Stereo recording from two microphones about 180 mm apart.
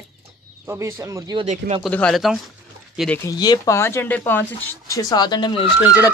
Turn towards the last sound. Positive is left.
turn(degrees=20)  # may be behind; listen again after turning